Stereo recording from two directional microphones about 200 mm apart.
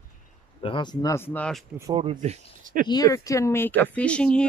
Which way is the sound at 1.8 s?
25° right (ahead or behind).